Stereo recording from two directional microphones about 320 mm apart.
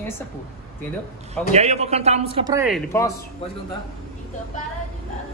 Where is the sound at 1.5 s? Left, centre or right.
Right.